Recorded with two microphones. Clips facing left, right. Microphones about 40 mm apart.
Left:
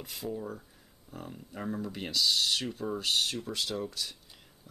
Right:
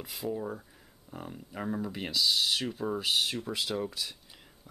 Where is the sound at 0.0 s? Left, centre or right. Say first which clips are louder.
Right 2 dB; centre.